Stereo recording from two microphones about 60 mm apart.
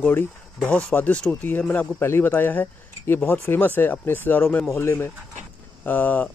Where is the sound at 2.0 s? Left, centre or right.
Left.